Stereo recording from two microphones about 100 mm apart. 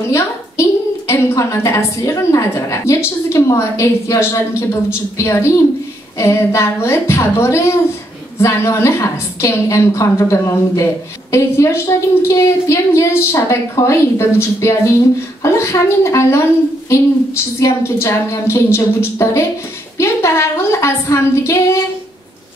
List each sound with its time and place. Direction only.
0.1 s a woman's voice: 30° left (ahead or behind)
17.6 s a woman's voice: 30° left (ahead or behind)